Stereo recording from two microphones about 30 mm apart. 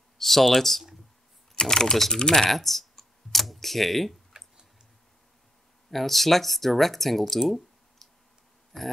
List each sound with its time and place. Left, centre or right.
0.2 s speech: centre
1.5 s speech: left
2.5 s computer keyboard: centre
4.3 s tick-tock: right
5.9 s speech: centre
7.3 s a sound: centre
8.7 s dog: centre